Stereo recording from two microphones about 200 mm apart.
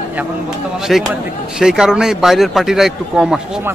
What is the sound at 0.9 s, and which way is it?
Speech, centre (ahead or behind).